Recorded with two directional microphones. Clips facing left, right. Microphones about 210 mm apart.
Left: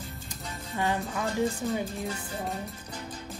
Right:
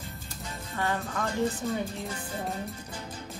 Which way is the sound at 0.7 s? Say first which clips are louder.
Left 1 dB; 15° left (ahead or behind).